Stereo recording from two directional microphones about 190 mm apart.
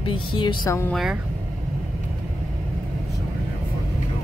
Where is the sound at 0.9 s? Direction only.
Centre (ahead or behind).